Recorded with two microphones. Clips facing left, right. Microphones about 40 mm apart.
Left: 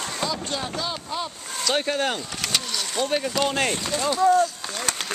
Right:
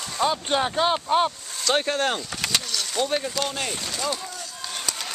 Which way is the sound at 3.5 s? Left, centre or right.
Left.